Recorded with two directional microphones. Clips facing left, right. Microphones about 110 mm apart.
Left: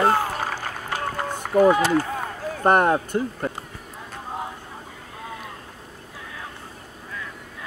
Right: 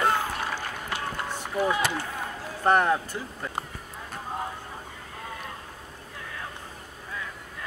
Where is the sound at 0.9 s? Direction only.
45° left (ahead or behind).